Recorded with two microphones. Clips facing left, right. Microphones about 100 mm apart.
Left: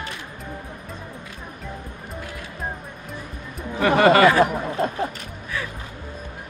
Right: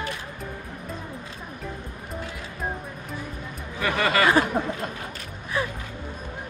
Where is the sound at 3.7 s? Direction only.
40° left (ahead or behind).